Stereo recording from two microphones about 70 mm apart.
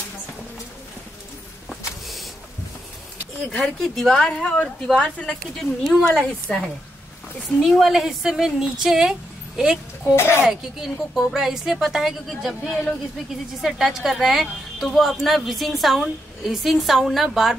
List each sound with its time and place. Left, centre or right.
3.5 s speech: centre
4.8 s a woman's voice: centre
9.6 s a sound: centre
10.1 s a child's voice: left
10.8 s a woman's voice: centre